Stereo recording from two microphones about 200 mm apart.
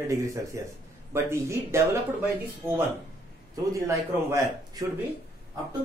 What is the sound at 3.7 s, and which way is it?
Speech, 15° right (ahead or behind).